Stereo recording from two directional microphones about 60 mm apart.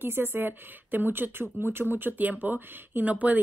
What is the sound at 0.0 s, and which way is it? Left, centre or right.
A woman's voice, right.